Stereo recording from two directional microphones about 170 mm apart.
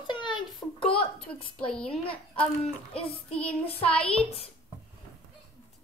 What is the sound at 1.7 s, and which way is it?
Speech, 5° left (ahead or behind).